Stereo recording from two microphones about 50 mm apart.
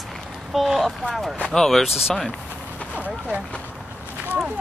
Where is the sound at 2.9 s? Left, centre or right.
Right.